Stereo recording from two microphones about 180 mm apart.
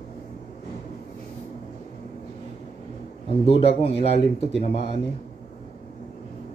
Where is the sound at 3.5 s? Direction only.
30° left (ahead or behind).